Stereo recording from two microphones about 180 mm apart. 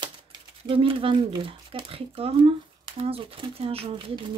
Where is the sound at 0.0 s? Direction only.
25° right (ahead or behind).